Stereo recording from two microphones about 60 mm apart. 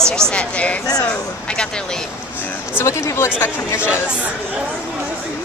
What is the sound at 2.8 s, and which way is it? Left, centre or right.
Speech, left.